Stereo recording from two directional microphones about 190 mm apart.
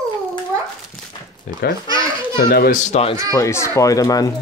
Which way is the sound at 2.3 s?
55° left (ahead or behind).